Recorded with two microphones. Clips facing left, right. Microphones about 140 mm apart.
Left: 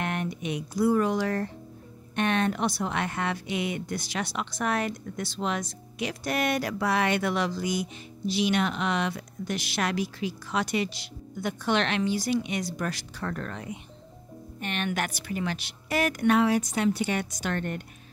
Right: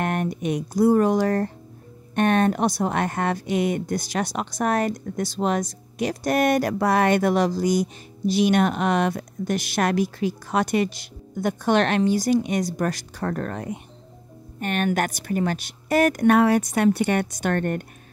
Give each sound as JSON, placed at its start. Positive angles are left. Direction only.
{"t": 0.0, "sound": "a woman's voice", "side_deg": -45}